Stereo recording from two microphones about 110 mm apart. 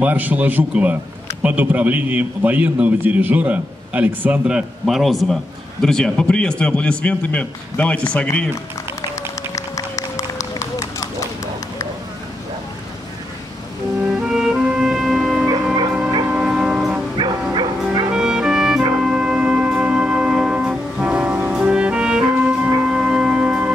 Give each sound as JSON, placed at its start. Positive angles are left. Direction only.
{"t": 0.0, "sound": "a man's voice", "side_deg": -15}
{"t": 9.6, "sound": "run", "side_deg": 30}
{"t": 14.0, "sound": "music", "side_deg": -5}
{"t": 15.4, "sound": "music", "side_deg": -35}
{"t": 16.3, "sound": "church bell", "side_deg": -10}
{"t": 17.2, "sound": "music", "side_deg": -45}
{"t": 18.1, "sound": "music", "side_deg": -5}